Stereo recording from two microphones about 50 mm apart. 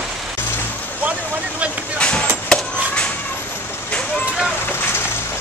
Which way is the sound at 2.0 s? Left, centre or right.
Left.